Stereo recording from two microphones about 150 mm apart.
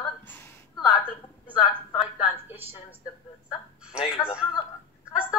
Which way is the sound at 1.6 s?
40° left (ahead or behind).